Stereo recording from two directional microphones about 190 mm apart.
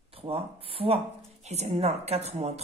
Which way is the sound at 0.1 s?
30° right (ahead or behind).